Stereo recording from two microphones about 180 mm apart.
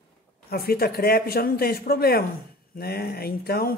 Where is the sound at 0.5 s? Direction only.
60° left (ahead or behind).